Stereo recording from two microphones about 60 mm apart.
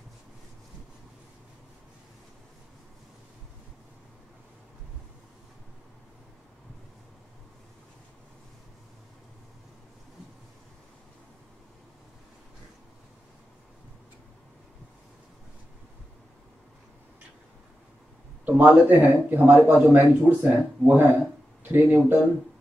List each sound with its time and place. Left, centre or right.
18.4 s a man's voice: right